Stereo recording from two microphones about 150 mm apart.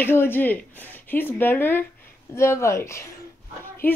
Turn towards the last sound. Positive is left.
turn(degrees=15)  # may be behind; listen again after turning